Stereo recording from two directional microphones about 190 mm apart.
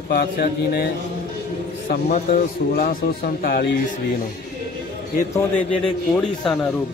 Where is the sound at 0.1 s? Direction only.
55° left (ahead or behind).